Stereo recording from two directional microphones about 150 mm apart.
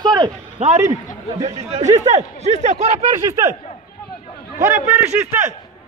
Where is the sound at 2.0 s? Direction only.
50° right (ahead or behind).